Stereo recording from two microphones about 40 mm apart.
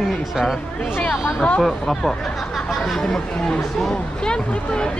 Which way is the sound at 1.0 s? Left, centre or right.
Left.